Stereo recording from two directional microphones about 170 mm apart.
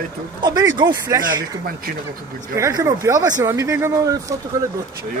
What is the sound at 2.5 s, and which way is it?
Speech, 15° right (ahead or behind).